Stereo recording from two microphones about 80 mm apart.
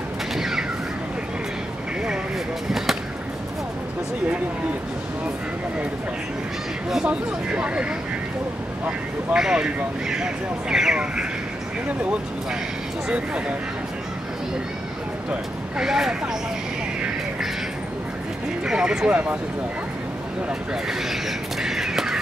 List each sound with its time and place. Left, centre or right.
0.4 s a sound: centre
6.9 s speech: centre
8.8 s speech: centre
15.8 s speech: centre
18.7 s speech: centre
21.1 s crow: centre